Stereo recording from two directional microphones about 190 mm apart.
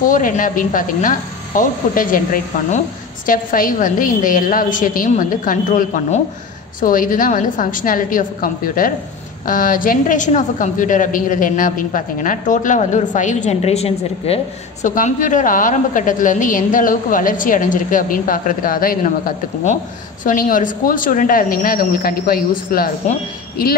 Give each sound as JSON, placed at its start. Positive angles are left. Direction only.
{"t": 0.0, "sound": "a woman's voice", "side_deg": 45}